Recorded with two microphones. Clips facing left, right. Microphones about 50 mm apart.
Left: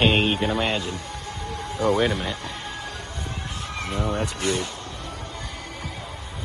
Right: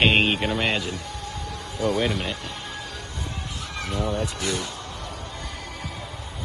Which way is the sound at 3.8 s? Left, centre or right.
Left.